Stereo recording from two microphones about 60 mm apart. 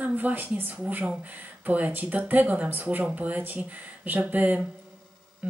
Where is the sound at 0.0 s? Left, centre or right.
Right.